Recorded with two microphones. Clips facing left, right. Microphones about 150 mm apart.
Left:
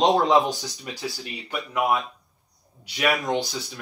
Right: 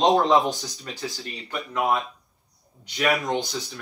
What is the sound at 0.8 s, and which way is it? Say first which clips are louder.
Speech: even; 15° left (ahead or behind).